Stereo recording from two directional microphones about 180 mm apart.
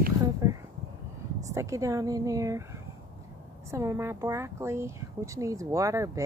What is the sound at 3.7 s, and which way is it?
A woman's voice, 15° right (ahead or behind).